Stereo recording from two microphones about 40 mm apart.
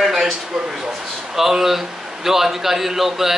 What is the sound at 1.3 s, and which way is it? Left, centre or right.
A man's voice, centre.